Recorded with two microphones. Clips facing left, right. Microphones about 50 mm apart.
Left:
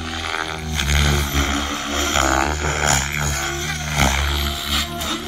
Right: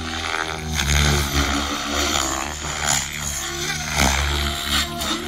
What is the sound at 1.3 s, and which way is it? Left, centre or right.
Vehicle, left.